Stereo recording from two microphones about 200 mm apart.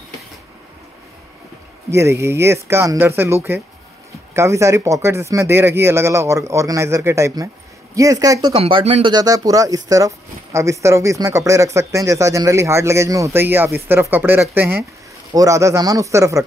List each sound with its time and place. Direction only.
1.9 s speech: 15° right (ahead or behind)